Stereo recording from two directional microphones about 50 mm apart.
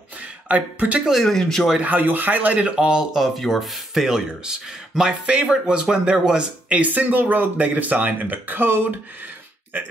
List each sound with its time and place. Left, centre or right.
0.5 s speech: right
1.2 s speech: centre
1.8 s speech: right
2.7 s speech: centre
3.2 s speech: centre
6.9 s speech: right